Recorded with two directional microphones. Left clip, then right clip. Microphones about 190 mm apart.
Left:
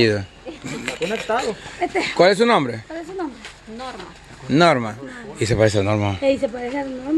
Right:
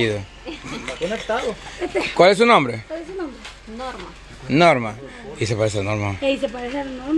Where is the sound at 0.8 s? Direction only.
30° left (ahead or behind).